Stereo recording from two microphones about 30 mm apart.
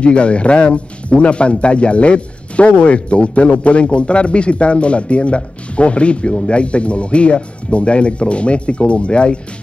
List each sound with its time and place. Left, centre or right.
0.0 s speech: left